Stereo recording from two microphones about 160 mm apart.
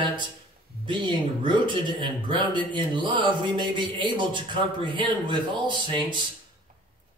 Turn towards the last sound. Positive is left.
turn(degrees=-30)  # may be behind; listen again after turning